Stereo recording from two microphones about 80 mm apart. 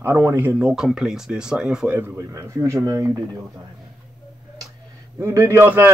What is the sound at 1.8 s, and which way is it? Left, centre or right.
A man's voice, right.